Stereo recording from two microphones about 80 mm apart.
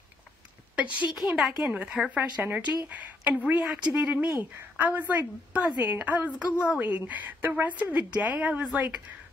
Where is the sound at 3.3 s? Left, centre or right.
Centre.